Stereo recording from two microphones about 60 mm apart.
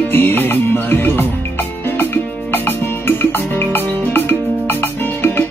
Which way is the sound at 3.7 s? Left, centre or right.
Left.